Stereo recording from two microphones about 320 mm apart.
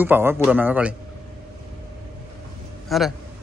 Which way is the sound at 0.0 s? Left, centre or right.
Centre.